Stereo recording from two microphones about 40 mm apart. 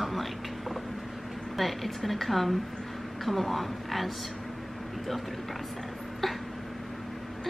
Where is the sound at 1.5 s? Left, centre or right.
Centre.